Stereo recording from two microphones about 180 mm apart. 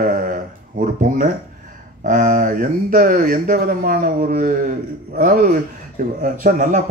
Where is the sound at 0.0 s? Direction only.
50° right (ahead or behind).